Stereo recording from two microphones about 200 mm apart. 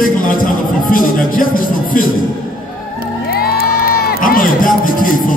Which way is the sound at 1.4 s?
45° left (ahead or behind).